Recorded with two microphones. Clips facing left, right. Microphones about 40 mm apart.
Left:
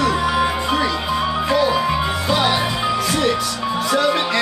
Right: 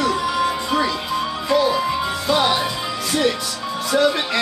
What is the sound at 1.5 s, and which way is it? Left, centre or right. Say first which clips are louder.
Speech: right 1 dB; centre.